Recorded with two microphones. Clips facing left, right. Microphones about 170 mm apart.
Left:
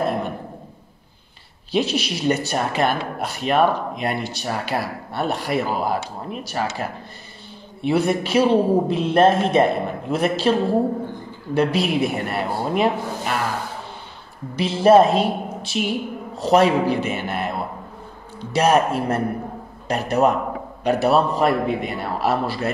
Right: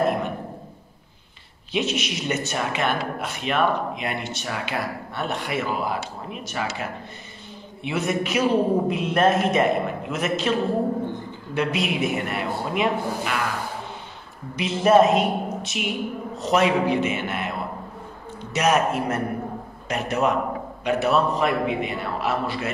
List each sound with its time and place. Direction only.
1.7 s a man's voice: 35° left (ahead or behind)
11.5 s a man's voice: 35° left (ahead or behind)
14.5 s a man's voice: 30° left (ahead or behind)